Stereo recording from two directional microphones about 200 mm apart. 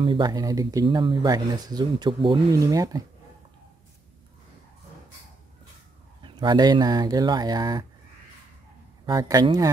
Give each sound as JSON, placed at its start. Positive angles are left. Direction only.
{"t": 0.0, "sound": "speech", "side_deg": -25}
{"t": 6.2, "sound": "speech", "side_deg": -25}
{"t": 9.0, "sound": "speech", "side_deg": -20}